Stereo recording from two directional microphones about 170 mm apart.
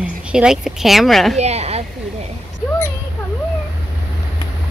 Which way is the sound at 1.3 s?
40° right (ahead or behind).